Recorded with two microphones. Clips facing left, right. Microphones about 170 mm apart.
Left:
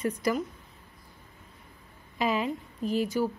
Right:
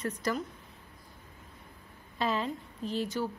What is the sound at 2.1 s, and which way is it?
Speech, 10° left (ahead or behind).